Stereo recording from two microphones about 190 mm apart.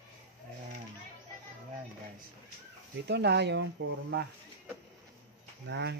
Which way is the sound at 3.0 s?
65° right (ahead or behind).